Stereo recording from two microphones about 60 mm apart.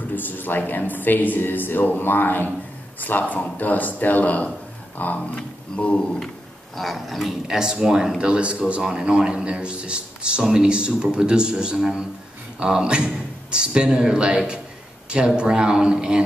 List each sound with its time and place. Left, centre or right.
0.1 s speech: left
6.8 s speech: centre